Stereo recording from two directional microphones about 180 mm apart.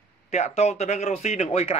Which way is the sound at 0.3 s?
35° left (ahead or behind).